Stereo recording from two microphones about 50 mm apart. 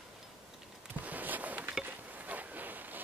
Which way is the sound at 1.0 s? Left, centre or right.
Right.